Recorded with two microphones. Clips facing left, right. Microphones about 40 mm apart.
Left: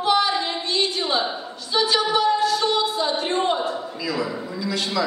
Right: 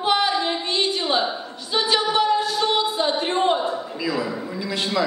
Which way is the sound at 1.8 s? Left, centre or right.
Right.